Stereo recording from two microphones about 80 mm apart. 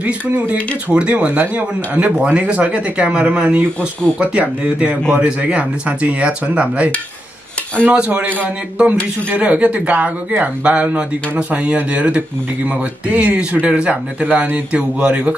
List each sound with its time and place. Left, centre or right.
0.0 s speech: centre